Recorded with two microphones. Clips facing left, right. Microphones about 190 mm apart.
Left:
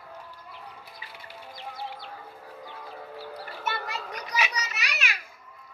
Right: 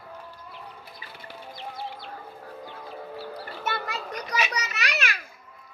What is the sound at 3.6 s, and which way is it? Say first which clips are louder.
Children playing: right 2 dB; 50° right (ahead or behind).